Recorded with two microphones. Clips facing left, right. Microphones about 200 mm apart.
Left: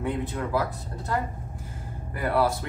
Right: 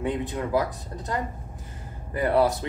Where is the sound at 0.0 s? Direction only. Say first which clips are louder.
Right 1 dB; 15° right (ahead or behind).